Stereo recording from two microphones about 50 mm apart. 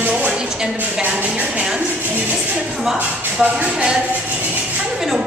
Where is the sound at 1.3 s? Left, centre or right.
Right.